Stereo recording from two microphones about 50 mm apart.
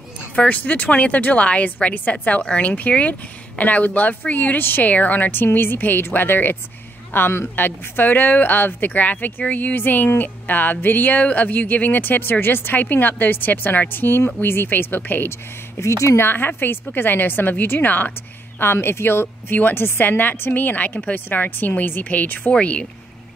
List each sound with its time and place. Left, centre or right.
0.4 s speech: left
15.8 s speech: left
16.2 s a woman's voice: left
18.6 s a woman's voice: left
22.5 s speech: left